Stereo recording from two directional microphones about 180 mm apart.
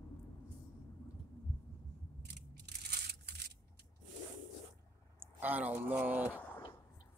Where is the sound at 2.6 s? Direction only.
65° right (ahead or behind).